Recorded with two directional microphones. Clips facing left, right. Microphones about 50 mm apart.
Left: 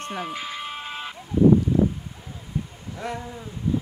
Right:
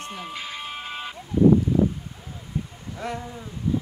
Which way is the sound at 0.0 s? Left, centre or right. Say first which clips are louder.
Left 4 dB; left.